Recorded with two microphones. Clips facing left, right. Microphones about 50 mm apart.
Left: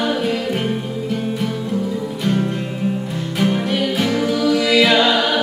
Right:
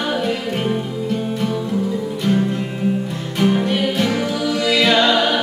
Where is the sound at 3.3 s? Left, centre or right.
Centre.